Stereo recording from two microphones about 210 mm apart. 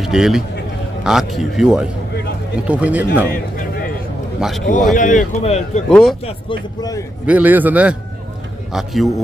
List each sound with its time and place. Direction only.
0.0 s a man's voice: centre (ahead or behind)
3.3 s a sound: 40° left (ahead or behind)
4.4 s speech: centre (ahead or behind)
4.9 s a man's voice: 40° left (ahead or behind)
5.9 s speech: centre (ahead or behind)
6.2 s speech: 20° left (ahead or behind)
7.2 s a man's voice: 5° right (ahead or behind)